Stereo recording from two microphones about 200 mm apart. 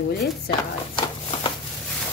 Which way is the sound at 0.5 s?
25° left (ahead or behind).